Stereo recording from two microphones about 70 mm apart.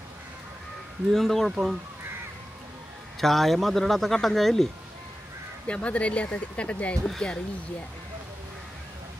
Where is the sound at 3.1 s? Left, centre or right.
Centre.